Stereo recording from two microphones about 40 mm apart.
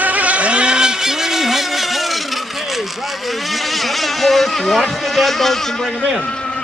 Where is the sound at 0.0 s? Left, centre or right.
Right; by 2.1 s centre.